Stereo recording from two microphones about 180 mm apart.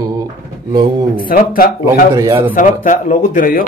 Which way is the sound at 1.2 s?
50° left (ahead or behind).